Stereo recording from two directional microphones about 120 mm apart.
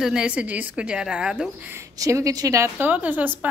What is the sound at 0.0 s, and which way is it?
A woman's voice, 5° right (ahead or behind).